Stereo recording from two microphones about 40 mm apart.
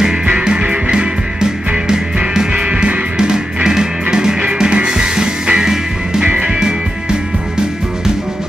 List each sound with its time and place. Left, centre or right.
0.0 s music: right